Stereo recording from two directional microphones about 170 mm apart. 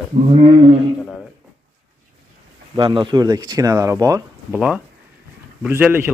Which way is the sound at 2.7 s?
25° right (ahead or behind).